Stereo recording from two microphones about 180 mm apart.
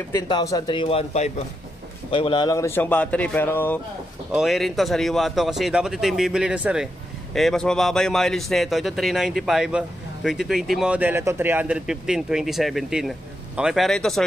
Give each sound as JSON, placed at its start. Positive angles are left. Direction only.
{"t": 0.1, "sound": "a man's voice", "side_deg": 20}
{"t": 4.3, "sound": "a man's voice", "side_deg": 0}